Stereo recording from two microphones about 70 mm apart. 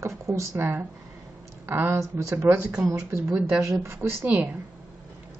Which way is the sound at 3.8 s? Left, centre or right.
Right.